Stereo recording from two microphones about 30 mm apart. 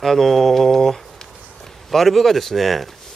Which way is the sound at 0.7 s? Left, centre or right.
Centre.